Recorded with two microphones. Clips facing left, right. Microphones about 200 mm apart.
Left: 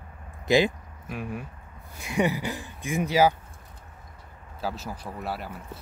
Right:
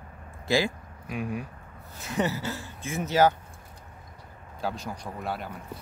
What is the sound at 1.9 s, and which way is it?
Speech, 15° left (ahead or behind).